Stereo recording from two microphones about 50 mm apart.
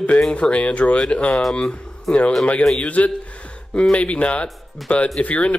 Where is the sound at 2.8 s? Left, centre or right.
Left.